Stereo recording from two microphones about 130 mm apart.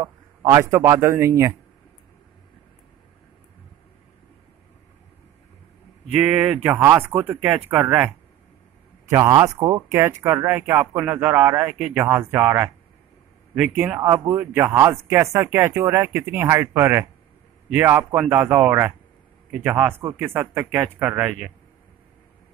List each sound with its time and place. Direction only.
0.0 s speech: 20° right (ahead or behind)
6.2 s speech: 5° right (ahead or behind)
7.3 s speech: 5° right (ahead or behind)
7.6 s speech: 15° right (ahead or behind)
9.3 s speech: 30° right (ahead or behind); by 21.5 s 10° right (ahead or behind)